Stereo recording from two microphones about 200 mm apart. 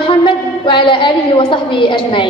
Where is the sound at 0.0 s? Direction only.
25° left (ahead or behind).